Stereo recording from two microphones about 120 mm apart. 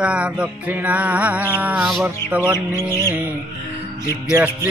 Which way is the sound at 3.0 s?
20° right (ahead or behind).